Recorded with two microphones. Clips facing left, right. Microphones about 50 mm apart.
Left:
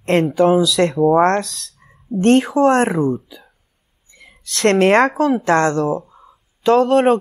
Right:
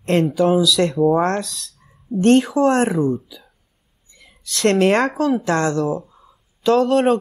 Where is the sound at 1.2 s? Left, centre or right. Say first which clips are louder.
Left 5 dB; left.